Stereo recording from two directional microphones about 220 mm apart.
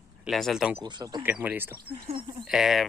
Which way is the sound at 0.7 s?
20° right (ahead or behind).